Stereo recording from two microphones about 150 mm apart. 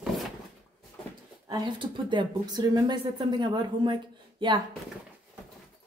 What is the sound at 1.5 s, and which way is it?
Speech, 30° right (ahead or behind).